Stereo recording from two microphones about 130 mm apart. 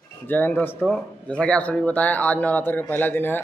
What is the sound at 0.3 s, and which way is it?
A man's voice, 15° left (ahead or behind).